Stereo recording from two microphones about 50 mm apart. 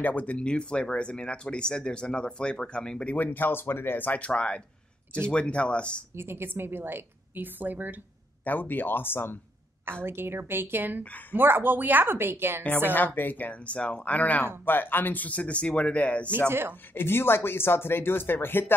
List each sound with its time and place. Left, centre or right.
0.0 s speech: left
3.2 s speech: left
6.1 s a woman's voice: right
8.5 s speech: left
10.0 s a woman's voice: right
12.9 s speech: left
14.6 s speech: left
15.2 s speech: left
16.4 s a woman's voice: right
16.9 s speech: left